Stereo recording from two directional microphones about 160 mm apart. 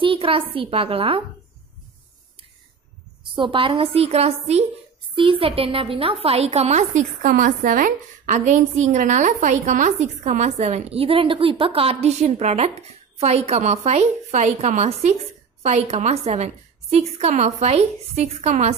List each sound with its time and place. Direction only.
0.0 s a woman's voice: 35° right (ahead or behind)
3.3 s a woman's voice: 30° right (ahead or behind)